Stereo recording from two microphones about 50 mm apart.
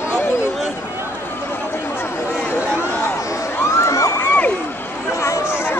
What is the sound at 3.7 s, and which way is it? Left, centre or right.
Crowd, left.